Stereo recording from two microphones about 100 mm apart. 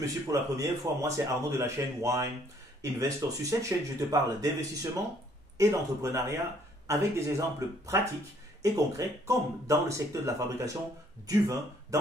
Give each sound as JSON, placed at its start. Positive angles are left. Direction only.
{"t": 0.0, "sound": "a man's voice", "side_deg": -35}